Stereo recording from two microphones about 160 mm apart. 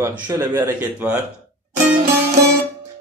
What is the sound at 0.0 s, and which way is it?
Speech, 15° right (ahead or behind).